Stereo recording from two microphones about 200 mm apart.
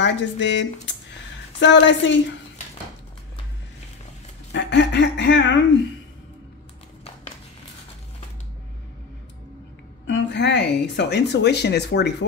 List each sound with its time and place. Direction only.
0.0 s speech: 60° left (ahead or behind)
4.5 s speech: 60° left (ahead or behind)
10.0 s speech: 60° left (ahead or behind)